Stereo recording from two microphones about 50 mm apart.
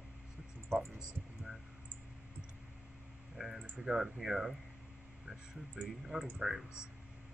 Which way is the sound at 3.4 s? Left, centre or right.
Centre.